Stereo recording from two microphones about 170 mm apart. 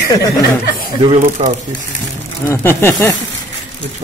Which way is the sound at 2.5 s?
15° left (ahead or behind).